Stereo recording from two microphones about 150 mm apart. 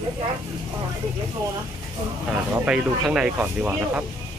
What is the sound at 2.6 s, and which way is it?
Speech, 10° right (ahead or behind).